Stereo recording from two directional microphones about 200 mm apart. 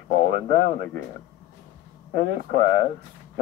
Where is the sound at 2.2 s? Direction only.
55° right (ahead or behind).